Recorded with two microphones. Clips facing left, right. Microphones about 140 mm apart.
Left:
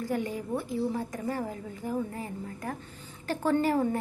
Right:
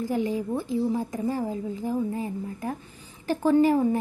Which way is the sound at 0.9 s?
20° right (ahead or behind).